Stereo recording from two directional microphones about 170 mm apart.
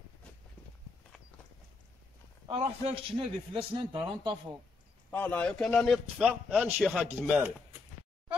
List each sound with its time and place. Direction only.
2.4 s a man's voice: 35° right (ahead or behind)
5.1 s a man's voice: 10° left (ahead or behind)
7.2 s speech: 10° right (ahead or behind)